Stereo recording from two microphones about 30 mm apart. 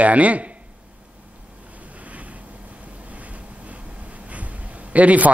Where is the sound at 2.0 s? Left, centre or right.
Right.